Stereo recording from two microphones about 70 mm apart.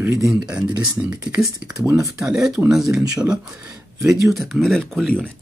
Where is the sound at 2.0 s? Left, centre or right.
Right.